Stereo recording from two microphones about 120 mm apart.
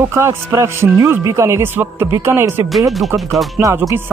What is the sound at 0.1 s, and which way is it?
Speech, 20° right (ahead or behind).